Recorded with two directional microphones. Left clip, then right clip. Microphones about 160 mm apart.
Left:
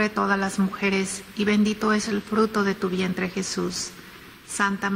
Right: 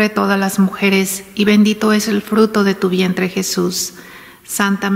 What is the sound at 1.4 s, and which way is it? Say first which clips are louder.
Speech: right 9 dB; 15° right (ahead or behind).